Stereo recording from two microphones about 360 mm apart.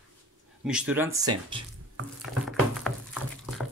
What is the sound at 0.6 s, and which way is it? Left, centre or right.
Speech, centre.